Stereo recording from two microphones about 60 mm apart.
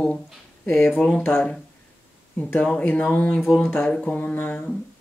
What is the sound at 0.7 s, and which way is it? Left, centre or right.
Speech, left.